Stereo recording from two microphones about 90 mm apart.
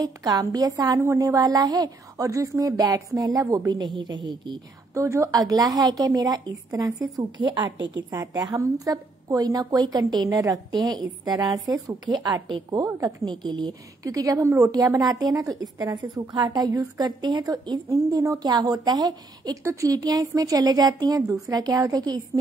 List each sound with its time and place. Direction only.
0.0 s a woman's voice: 50° right (ahead or behind)
4.9 s a woman's voice: 35° right (ahead or behind); by 7.7 s 50° right (ahead or behind)
8.1 s a woman's voice: 40° right (ahead or behind)
10.7 s a woman's voice: 50° right (ahead or behind)
14.0 s a woman's voice: 40° right (ahead or behind)
17.8 s a woman's voice: 35° right (ahead or behind)
19.6 s a woman's voice: 35° right (ahead or behind)